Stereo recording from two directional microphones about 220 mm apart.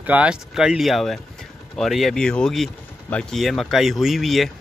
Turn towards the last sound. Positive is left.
turn(degrees=0)  # may be behind; listen again after turning